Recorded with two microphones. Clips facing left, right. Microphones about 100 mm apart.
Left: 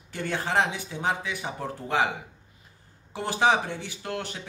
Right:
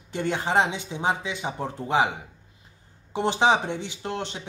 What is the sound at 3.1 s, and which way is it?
Speech, 20° right (ahead or behind).